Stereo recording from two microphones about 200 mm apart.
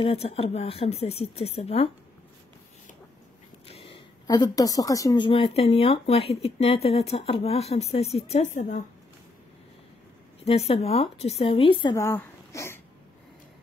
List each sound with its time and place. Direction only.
0.0 s a woman's voice: 30° left (ahead or behind)
3.6 s a woman's voice: 25° left (ahead or behind)
10.4 s speech: 30° left (ahead or behind); by 12.8 s 15° left (ahead or behind)